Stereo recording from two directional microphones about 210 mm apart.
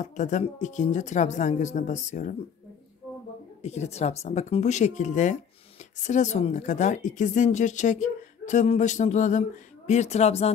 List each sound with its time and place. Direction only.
0.0 s a woman's voice: 35° left (ahead or behind)
3.6 s a woman's voice: 30° left (ahead or behind)